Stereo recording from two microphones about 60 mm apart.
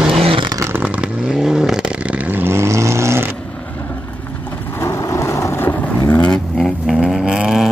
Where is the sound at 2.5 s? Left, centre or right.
Right.